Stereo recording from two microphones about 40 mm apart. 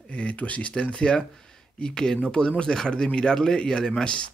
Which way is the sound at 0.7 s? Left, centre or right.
Left.